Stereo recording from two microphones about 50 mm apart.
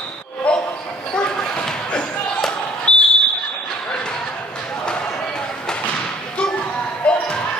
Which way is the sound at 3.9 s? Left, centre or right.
Centre.